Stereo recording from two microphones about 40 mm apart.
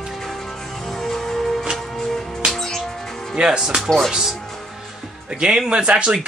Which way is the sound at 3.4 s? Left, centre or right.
Centre.